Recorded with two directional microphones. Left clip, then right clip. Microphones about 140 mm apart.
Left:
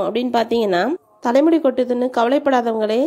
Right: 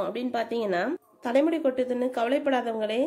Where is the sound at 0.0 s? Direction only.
40° left (ahead or behind).